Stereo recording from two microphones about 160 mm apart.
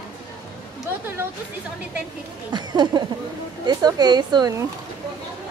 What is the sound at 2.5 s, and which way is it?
A woman's voice, 25° right (ahead or behind).